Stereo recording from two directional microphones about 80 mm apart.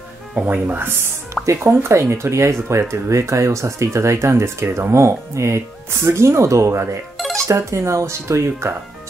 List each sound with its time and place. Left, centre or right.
0.3 s speech: centre; by 7.0 s right
7.2 s music: centre
7.4 s speech: right